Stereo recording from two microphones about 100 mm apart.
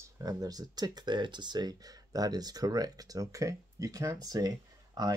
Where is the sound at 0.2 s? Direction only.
40° right (ahead or behind).